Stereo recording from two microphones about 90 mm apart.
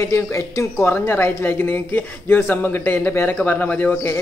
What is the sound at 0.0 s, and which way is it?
A woman's voice, 30° left (ahead or behind).